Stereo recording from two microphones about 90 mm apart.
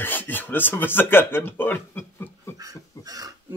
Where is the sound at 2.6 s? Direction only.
45° right (ahead or behind).